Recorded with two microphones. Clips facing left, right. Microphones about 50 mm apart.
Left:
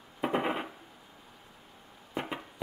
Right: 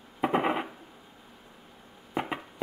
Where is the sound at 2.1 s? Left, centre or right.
Centre.